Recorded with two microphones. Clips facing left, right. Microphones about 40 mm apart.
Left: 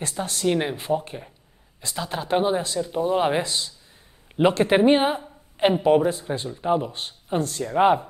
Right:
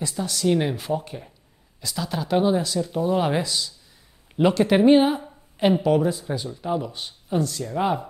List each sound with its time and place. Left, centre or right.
0.0 s speech: left
0.5 s speech: centre
6.9 s speech: left